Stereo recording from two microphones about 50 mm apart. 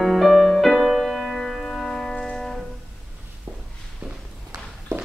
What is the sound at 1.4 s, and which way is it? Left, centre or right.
Music, centre.